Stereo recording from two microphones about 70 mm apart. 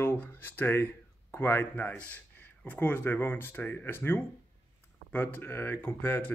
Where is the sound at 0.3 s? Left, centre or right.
Left.